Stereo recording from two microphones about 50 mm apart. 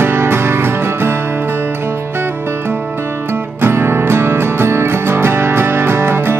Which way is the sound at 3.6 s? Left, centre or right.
Right.